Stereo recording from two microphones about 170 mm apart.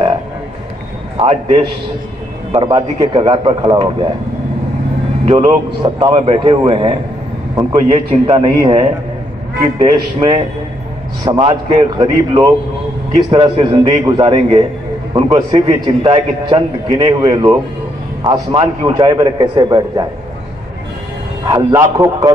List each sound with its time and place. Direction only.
1.1 s a man's voice: 35° right (ahead or behind)
5.2 s speech: 50° right (ahead or behind)
5.9 s a man's voice: 25° right (ahead or behind)
21.5 s a man's voice: 20° right (ahead or behind)